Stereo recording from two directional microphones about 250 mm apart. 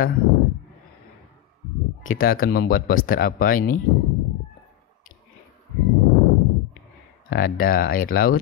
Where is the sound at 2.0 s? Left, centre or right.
Left.